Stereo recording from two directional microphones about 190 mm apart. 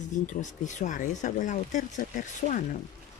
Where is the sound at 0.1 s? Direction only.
40° left (ahead or behind).